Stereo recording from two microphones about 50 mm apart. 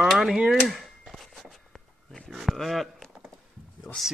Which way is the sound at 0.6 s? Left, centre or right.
Centre.